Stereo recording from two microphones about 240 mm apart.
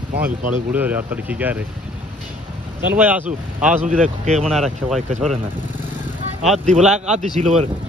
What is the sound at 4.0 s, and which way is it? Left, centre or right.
Speech, right.